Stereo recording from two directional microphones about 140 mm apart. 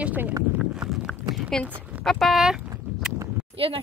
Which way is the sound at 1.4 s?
5° left (ahead or behind).